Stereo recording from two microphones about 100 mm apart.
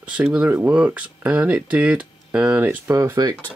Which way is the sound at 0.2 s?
15° right (ahead or behind).